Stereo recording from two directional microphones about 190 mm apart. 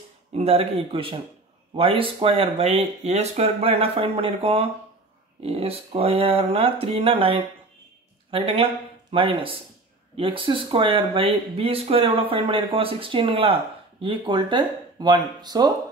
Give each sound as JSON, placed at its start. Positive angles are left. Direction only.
{"t": 0.3, "sound": "speech", "side_deg": -35}